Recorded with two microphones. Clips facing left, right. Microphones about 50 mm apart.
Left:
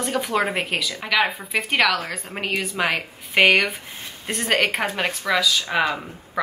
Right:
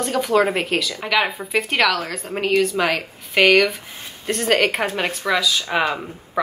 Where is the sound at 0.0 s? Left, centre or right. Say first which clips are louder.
Right 4 dB; centre.